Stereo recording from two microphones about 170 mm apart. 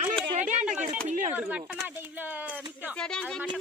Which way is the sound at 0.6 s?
5° right (ahead or behind).